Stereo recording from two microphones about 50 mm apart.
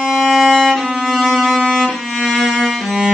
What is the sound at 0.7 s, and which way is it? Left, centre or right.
Music, centre.